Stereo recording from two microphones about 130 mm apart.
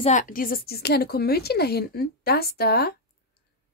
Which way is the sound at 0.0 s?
75° left (ahead or behind).